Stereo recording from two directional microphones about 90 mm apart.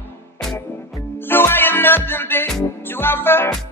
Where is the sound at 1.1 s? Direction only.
25° left (ahead or behind).